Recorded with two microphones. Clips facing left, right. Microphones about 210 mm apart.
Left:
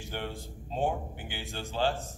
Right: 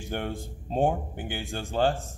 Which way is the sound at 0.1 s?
50° right (ahead or behind).